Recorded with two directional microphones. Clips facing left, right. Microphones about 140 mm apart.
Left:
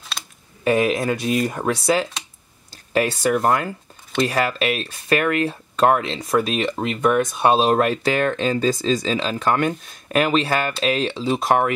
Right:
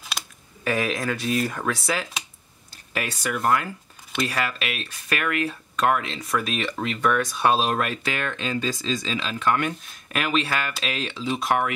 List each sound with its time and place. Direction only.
0.7 s speech: 25° left (ahead or behind)